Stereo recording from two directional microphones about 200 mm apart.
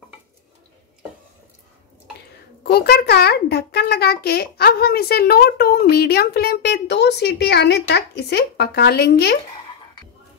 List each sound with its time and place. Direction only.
2.6 s a child's voice: 55° left (ahead or behind)